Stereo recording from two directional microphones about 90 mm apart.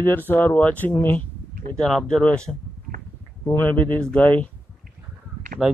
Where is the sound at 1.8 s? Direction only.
5° left (ahead or behind).